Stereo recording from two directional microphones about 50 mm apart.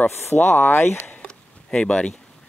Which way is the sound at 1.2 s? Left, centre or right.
Centre.